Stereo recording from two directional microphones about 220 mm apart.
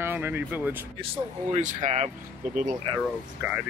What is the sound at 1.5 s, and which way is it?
Speech, 35° right (ahead or behind).